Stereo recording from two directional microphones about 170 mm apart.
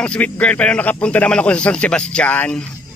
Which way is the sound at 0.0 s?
5° left (ahead or behind).